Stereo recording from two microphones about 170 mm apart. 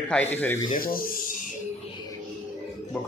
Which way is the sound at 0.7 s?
60° left (ahead or behind).